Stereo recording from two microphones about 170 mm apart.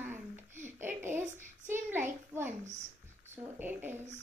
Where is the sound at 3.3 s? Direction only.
10° right (ahead or behind).